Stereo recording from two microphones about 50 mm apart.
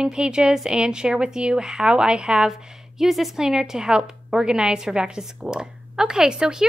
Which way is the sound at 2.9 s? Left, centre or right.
Centre.